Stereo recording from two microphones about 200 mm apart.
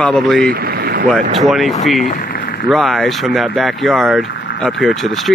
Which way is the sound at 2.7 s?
Centre (ahead or behind).